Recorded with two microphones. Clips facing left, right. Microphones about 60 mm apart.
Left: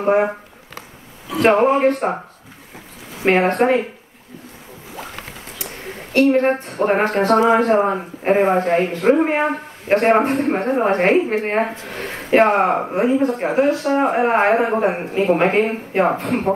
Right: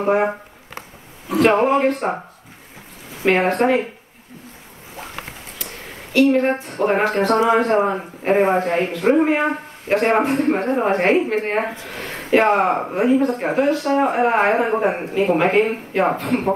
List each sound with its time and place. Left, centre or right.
0.0 s speech: centre
1.4 s speech: centre
3.4 s speech: centre
6.1 s a woman's voice: left
6.4 s speech: centre
11.8 s a sound: centre
12.4 s speech: centre